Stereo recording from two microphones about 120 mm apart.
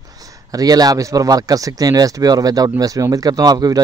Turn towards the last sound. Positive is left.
turn(degrees=-30)  # may be behind; listen again after turning